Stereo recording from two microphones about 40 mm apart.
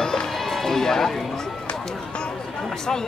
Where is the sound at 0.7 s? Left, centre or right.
Centre.